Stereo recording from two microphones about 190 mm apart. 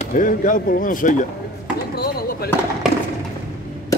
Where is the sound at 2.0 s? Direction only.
55° left (ahead or behind).